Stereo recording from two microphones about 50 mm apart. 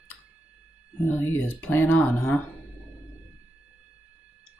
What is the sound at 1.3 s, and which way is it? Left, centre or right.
Speech, left.